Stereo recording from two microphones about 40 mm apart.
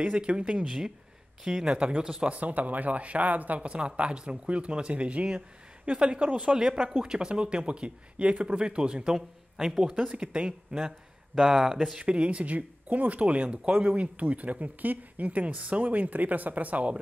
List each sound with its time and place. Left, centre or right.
0.0 s speech: right
0.7 s speech: centre
1.7 s speech: right
3.6 s speech: right
6.4 s speech: centre
9.8 s speech: right
10.7 s speech: right
11.3 s speech: centre
12.0 s speech: right